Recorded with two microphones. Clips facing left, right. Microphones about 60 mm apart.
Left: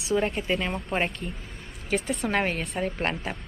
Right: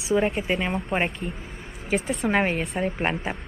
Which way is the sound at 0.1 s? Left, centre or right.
Centre.